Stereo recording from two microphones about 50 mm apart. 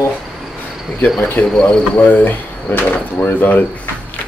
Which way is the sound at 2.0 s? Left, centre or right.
Left.